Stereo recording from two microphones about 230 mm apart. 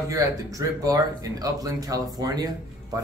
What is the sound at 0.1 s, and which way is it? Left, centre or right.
Speech, centre.